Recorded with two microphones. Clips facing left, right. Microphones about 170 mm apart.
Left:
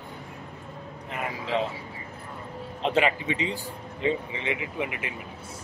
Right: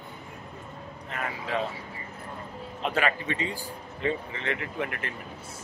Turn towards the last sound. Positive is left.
turn(degrees=10)  # may be behind; listen again after turning